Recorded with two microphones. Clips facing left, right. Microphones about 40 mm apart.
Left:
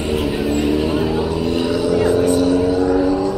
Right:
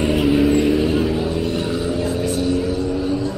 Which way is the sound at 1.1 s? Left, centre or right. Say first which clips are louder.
Left 2 dB; left.